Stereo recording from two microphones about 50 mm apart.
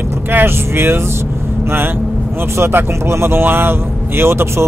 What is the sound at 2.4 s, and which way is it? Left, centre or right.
Speech, right.